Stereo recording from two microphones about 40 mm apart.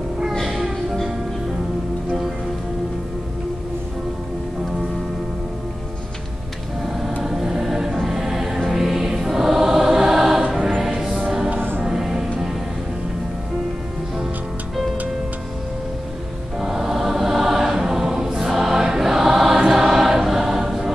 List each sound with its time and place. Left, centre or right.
0.4 s music: centre
6.9 s vehicle: centre
7.2 s choir: centre
8.1 s music: centre
16.5 s choir: centre